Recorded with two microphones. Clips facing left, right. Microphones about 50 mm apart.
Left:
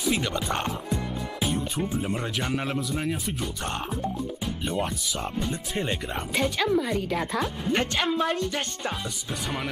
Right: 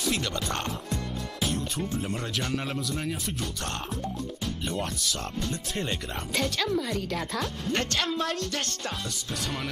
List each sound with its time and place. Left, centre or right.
0.0 s speech: centre